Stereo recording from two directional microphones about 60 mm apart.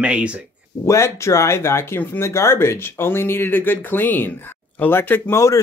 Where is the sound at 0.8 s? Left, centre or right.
Left.